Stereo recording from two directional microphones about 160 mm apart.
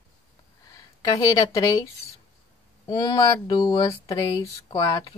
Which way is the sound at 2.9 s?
25° left (ahead or behind).